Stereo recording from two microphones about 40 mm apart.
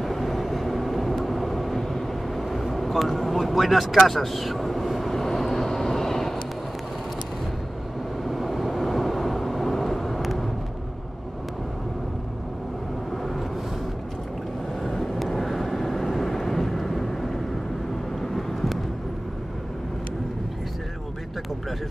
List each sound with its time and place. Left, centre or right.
0.0 s vehicle: centre
8.2 s vehicle: centre
14.8 s vehicle: centre